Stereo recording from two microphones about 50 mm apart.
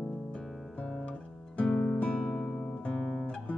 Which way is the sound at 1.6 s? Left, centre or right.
Left.